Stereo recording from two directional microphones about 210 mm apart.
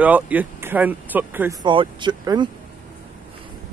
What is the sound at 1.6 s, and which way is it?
Speech, 20° right (ahead or behind).